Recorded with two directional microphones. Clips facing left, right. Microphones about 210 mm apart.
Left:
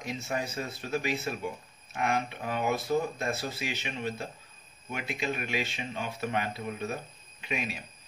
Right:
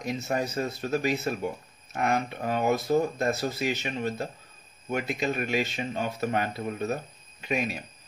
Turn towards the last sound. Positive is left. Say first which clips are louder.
# right 6 dB
turn(degrees=-45)  # may be behind; listen again after turning